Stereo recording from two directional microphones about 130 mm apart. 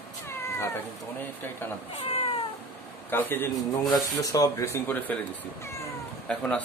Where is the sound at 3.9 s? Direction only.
25° left (ahead or behind).